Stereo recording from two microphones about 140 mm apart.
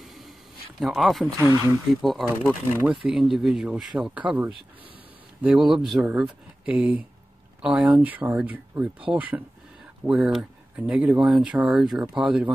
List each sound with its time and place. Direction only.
0.0 s a sound: centre (ahead or behind)
0.7 s speech: centre (ahead or behind)
1.4 s speech: 20° right (ahead or behind)
2.0 s speech: centre (ahead or behind)
2.7 s speech: 10° right (ahead or behind)